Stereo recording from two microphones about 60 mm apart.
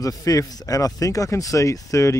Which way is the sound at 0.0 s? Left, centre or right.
Left.